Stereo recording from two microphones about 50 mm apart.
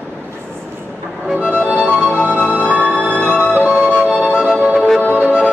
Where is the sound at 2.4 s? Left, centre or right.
Left.